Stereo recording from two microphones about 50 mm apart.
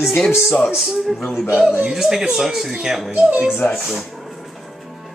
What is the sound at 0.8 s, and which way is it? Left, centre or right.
Speech, centre.